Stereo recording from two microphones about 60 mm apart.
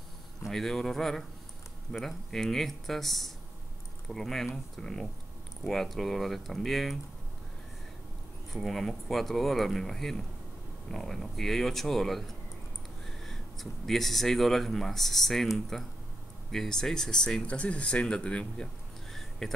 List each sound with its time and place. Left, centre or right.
0.5 s speech: centre
8.5 s speech: centre
19.4 s speech: centre